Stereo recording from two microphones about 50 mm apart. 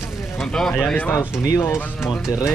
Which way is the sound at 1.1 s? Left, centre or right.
Left.